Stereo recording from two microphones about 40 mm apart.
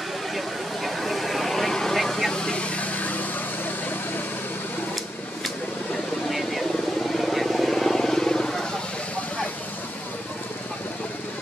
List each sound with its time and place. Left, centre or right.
0.8 s a sound: centre
2.3 s vehicle: left
7.2 s vehicle: centre